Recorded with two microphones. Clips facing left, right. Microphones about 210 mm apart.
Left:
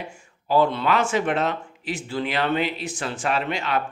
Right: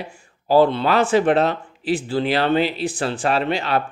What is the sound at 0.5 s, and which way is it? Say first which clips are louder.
Speech: right 4 dB; 30° right (ahead or behind).